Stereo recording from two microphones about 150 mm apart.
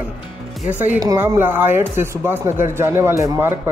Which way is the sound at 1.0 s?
25° right (ahead or behind).